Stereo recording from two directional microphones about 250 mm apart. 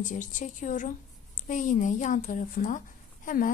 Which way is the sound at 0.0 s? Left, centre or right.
Left.